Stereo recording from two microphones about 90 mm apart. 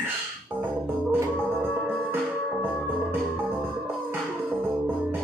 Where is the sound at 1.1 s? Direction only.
25° right (ahead or behind).